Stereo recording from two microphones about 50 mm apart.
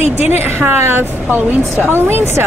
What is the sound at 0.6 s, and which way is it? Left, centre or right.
Speech, right.